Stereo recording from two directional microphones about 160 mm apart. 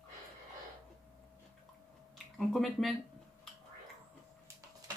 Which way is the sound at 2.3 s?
Centre (ahead or behind).